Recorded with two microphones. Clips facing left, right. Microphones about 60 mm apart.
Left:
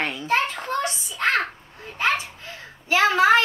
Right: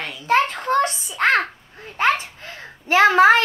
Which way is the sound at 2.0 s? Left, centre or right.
Right.